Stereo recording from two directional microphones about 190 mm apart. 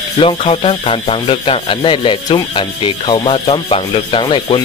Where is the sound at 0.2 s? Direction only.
30° left (ahead or behind).